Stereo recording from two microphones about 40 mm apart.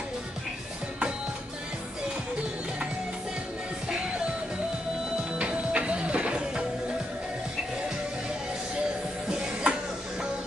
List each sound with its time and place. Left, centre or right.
5.4 s music: right
9.3 s music: right